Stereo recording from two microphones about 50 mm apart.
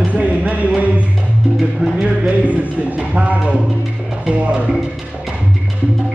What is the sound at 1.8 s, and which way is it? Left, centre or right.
Music, centre.